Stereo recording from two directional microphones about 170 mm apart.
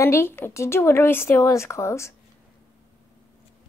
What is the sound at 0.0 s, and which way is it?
Speech, 15° left (ahead or behind).